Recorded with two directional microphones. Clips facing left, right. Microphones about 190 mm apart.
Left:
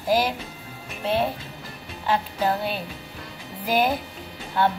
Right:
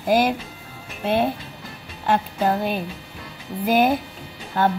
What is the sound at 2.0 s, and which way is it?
Music, 50° right (ahead or behind).